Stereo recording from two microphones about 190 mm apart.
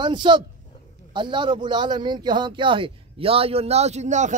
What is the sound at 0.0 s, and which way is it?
A man's voice, 25° right (ahead or behind).